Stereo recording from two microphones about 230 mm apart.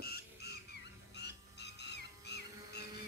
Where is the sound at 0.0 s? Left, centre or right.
Left.